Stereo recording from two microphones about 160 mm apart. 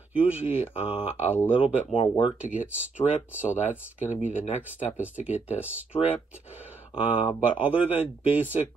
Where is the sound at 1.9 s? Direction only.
35° left (ahead or behind).